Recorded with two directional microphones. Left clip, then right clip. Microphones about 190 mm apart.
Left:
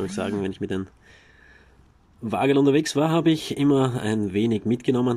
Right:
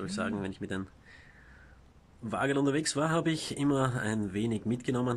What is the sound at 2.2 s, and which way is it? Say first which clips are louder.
Speech: left 10 dB; 15° left (ahead or behind).